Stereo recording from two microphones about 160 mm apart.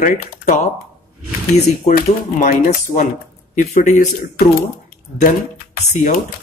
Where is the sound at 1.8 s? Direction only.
60° left (ahead or behind).